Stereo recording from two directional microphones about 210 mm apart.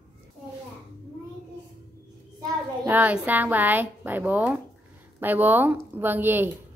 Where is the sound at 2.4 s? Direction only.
15° right (ahead or behind).